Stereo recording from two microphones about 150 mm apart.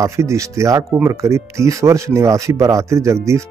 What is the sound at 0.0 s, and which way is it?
Speech, 20° right (ahead or behind).